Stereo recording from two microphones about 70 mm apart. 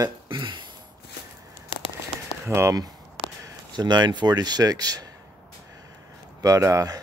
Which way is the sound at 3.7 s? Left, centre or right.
Right.